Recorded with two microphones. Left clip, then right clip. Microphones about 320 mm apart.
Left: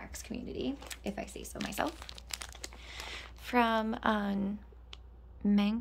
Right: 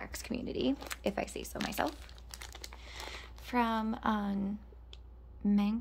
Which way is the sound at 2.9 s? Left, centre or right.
Centre.